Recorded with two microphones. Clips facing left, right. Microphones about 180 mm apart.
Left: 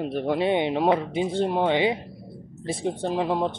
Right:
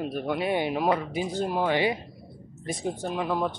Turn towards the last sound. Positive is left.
turn(degrees=25)  # may be behind; listen again after turning